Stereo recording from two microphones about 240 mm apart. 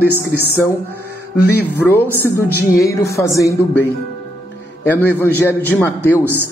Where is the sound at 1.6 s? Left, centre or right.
Centre.